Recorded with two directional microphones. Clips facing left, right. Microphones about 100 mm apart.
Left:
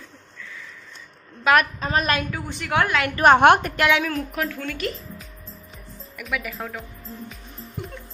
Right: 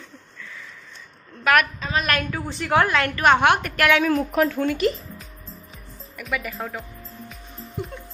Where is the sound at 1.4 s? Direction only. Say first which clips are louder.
Left 1 dB; 25° left (ahead or behind).